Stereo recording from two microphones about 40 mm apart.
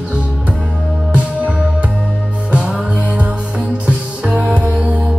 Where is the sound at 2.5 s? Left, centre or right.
Centre.